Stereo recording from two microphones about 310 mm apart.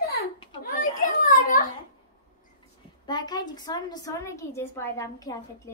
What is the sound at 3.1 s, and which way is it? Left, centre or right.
A woman's voice, centre.